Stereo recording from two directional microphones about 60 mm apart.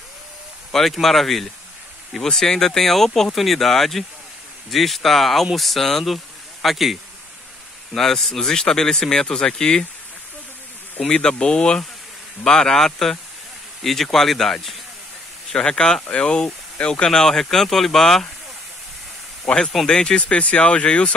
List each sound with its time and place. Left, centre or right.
0.7 s speech: centre
11.0 s speech: centre
15.5 s speech: centre
19.4 s speech: centre